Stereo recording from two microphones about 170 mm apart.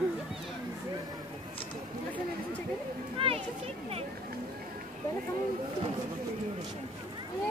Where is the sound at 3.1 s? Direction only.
35° right (ahead or behind).